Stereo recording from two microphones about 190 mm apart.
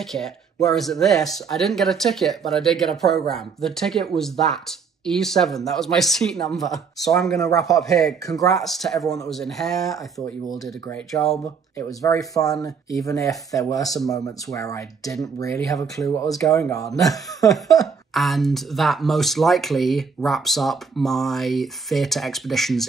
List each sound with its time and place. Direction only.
0.0 s speech: centre (ahead or behind)
7.3 s speech: 15° left (ahead or behind)
7.6 s speech: centre (ahead or behind)
12.0 s speech: 20° left (ahead or behind)
17.7 s speech: centre (ahead or behind)